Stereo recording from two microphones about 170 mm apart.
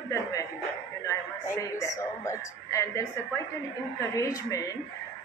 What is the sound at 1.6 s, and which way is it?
A woman's voice, 20° left (ahead or behind).